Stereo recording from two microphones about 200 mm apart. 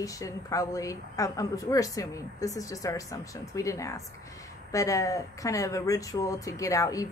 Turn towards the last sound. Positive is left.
turn(degrees=15)  # may be behind; listen again after turning